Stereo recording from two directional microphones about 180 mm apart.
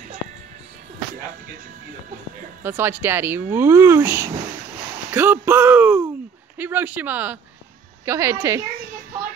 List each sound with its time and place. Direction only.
2.6 s a child's voice: 10° right (ahead or behind)